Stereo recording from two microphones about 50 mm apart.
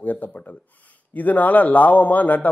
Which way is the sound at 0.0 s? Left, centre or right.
Left.